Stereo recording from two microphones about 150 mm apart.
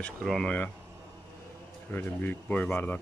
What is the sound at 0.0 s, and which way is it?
Speech, 5° left (ahead or behind).